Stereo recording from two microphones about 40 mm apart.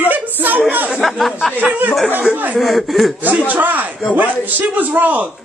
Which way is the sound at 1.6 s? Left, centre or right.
Right.